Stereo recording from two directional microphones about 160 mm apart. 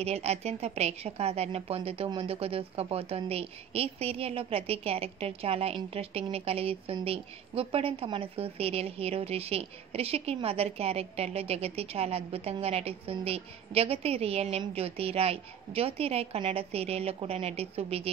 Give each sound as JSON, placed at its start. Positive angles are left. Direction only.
{"t": 0.0, "sound": "a woman's voice", "side_deg": -40}